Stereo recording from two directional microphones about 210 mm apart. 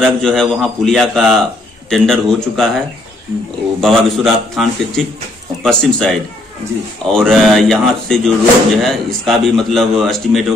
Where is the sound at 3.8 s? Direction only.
Centre (ahead or behind).